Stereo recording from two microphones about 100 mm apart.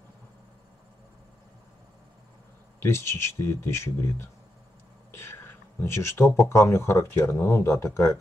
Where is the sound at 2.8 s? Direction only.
25° left (ahead or behind).